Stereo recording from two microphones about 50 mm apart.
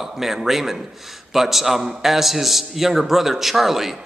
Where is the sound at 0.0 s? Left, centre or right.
Centre.